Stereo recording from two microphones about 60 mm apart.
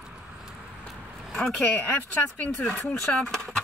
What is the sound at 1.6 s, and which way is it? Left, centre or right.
Speech, left.